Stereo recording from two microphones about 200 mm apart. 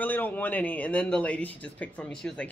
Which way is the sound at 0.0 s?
10° left (ahead or behind).